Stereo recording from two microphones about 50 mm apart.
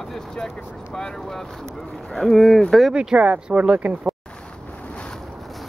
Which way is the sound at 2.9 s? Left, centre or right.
Right.